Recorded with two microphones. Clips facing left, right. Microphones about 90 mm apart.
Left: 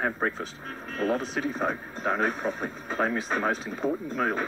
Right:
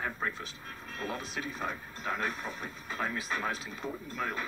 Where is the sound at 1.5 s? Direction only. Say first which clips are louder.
Left 8 dB; 45° left (ahead or behind).